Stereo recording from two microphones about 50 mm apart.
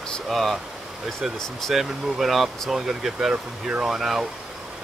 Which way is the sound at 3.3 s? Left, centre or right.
Right.